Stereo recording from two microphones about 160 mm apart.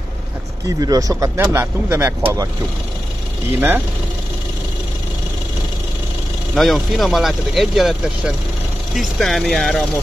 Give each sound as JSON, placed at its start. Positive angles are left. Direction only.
{"t": 0.7, "sound": "speech", "side_deg": -20}
{"t": 6.5, "sound": "speech", "side_deg": 0}
{"t": 8.9, "sound": "speech", "side_deg": 0}